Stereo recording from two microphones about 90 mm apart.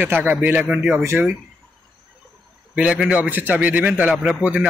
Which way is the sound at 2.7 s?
10° right (ahead or behind).